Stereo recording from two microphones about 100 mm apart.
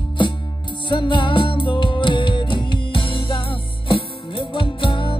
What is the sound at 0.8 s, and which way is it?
Music, 55° left (ahead or behind).